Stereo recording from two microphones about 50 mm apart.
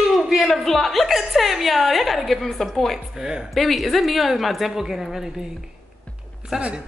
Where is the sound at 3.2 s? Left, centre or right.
Centre.